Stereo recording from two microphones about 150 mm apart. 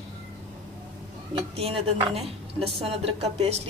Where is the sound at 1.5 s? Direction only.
40° right (ahead or behind).